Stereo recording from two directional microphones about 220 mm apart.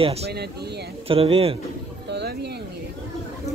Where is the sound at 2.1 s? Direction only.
50° right (ahead or behind).